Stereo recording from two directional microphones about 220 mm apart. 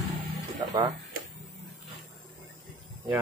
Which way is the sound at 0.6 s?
15° right (ahead or behind).